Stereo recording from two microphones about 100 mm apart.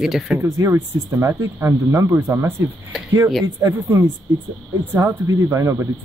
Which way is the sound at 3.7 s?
25° right (ahead or behind).